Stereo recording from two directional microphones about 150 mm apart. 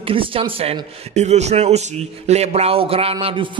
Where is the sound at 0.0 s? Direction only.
35° right (ahead or behind).